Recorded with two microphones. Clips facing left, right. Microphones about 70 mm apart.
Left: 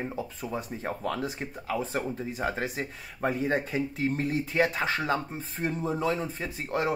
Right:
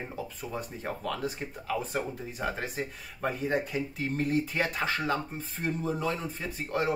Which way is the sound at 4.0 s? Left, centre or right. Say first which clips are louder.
Right 2 dB; left.